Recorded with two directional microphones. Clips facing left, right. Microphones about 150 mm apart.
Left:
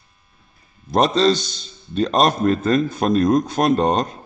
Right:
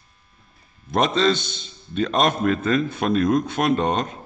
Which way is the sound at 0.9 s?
35° left (ahead or behind).